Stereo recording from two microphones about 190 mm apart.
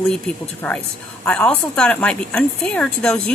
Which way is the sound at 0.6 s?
5° left (ahead or behind).